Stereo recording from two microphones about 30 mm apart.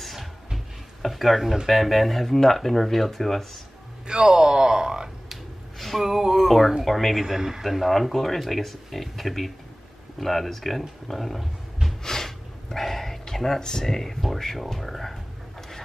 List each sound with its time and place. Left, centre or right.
0.0 s a sound: centre
1.7 s speech: centre
4.1 s speech: right
5.8 s a sound: centre
6.0 s speech: centre
6.8 s speech: centre
7.3 s speech: centre
7.6 s speech: centre
12.0 s snort: centre
13.2 s a sound: centre
13.6 s speech: left; by 15.1 s centre